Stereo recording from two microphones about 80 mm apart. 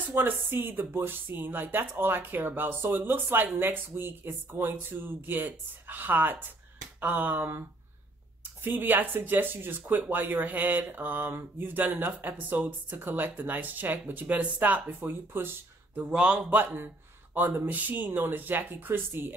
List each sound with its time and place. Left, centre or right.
0.0 s speech: right
8.6 s speech: right
16.0 s speech: centre